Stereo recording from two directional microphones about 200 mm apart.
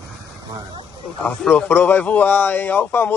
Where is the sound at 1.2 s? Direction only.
10° left (ahead or behind).